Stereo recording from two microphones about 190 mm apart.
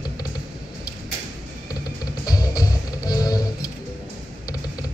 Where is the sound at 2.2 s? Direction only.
20° left (ahead or behind).